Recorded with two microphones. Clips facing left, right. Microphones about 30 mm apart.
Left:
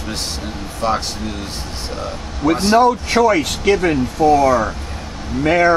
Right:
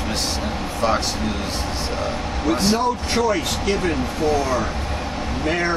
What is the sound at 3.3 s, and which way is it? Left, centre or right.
Speech, left.